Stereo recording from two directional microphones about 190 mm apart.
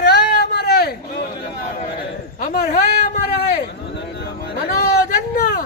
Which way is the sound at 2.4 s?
50° left (ahead or behind).